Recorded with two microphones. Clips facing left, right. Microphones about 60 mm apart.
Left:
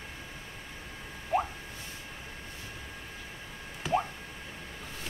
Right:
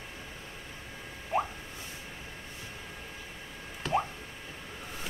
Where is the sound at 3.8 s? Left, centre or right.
Centre.